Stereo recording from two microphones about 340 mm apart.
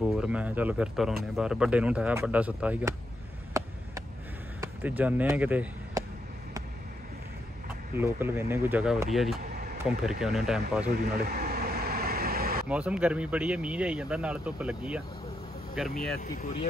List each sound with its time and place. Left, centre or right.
0.1 s speech: centre
3.6 s a sound: centre
4.6 s speech: centre
8.0 s speech: centre
9.4 s a sound: right
9.8 s speech: centre
10.9 s vehicle: right
12.6 s speech: centre
16.2 s speech: left